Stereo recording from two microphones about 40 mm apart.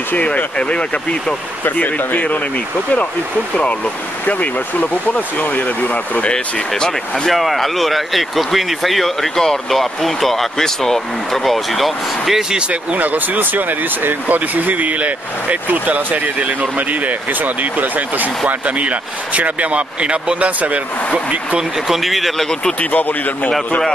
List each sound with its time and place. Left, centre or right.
0.1 s speech: left
1.8 s speech: left
4.3 s speech: left
6.7 s speech: centre
12.9 s speech: right
18.5 s speech: right
21.9 s speech: centre
22.8 s speech: left